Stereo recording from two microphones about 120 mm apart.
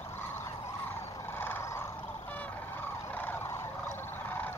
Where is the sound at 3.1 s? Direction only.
15° left (ahead or behind).